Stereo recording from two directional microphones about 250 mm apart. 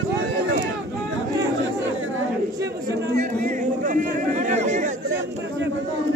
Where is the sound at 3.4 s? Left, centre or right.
Right.